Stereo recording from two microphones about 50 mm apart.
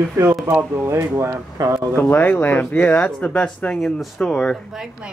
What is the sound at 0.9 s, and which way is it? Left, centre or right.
Speech, right.